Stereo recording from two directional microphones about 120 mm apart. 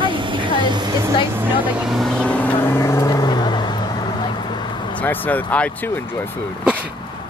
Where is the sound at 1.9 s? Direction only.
Centre (ahead or behind); by 4.7 s 40° left (ahead or behind).